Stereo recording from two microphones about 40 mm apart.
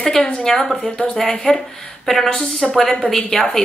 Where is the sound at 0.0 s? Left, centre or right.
Centre.